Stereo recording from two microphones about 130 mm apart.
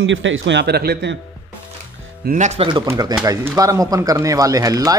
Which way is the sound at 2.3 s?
65° right (ahead or behind).